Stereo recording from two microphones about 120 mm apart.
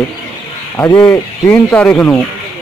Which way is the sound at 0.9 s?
15° left (ahead or behind).